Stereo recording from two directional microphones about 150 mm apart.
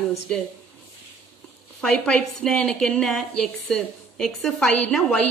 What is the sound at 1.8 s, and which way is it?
A woman's voice, 5° left (ahead or behind).